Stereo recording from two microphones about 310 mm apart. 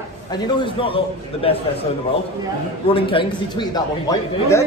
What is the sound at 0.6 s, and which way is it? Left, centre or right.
Speech, centre.